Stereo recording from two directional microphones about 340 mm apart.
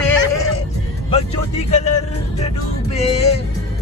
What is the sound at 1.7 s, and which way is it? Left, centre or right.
Music, centre.